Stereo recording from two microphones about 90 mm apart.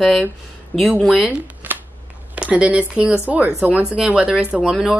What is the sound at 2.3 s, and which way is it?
A woman's voice, 10° right (ahead or behind).